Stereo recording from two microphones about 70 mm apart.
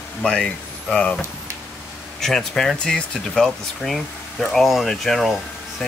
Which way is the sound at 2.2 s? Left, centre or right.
Centre.